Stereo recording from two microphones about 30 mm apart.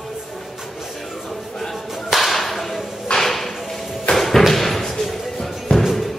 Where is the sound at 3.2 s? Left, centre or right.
Centre.